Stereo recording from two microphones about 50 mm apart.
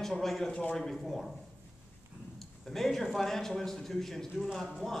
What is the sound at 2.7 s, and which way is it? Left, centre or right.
A man's voice, centre.